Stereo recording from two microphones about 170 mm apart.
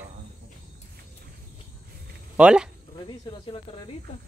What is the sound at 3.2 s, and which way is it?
Speech, 30° left (ahead or behind).